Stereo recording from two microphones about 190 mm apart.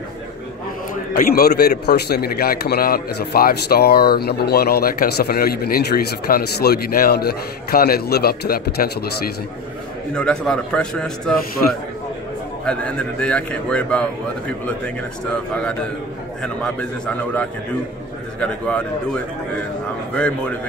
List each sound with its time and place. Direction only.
1.1 s a man's voice: 55° left (ahead or behind)
10.1 s a man's voice: 5° left (ahead or behind)
12.6 s a man's voice: 5° left (ahead or behind)
17.0 s a man's voice: 5° left (ahead or behind)